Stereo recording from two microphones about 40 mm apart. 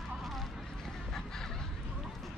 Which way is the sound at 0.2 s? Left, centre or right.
Centre.